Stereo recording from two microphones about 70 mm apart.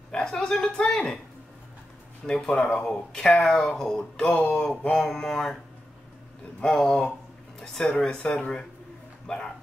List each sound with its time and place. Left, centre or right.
0.1 s speech: centre
2.2 s speech: centre
4.2 s speech: centre
6.6 s speech: centre